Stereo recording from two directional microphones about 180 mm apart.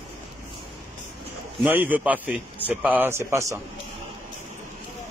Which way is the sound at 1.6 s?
10° right (ahead or behind).